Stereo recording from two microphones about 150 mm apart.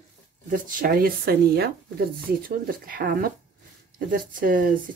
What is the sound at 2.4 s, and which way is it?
Speech, 80° right.